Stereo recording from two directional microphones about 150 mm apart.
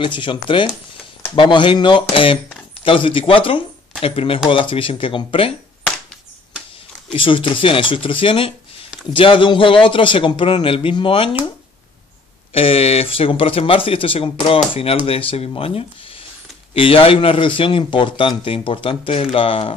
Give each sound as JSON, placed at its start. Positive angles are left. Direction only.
{"t": 0.0, "sound": "speech", "side_deg": 35}
{"t": 7.1, "sound": "speech", "side_deg": 35}
{"t": 12.5, "sound": "speech", "side_deg": 40}